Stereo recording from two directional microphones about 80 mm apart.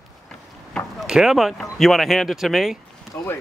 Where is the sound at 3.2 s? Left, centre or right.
Left.